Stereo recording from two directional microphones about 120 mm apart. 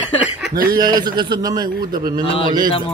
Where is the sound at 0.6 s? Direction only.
35° right (ahead or behind).